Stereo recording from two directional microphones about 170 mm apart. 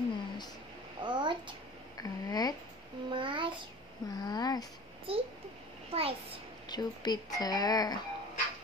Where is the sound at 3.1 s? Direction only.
30° right (ahead or behind).